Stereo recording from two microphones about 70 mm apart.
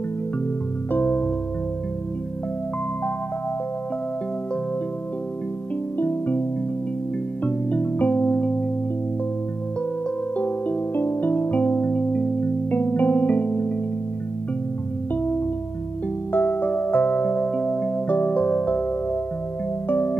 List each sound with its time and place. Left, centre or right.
0.9 s music: left
5.9 s music: left
7.4 s music: left
10.3 s music: left
16.3 s music: left
19.9 s music: left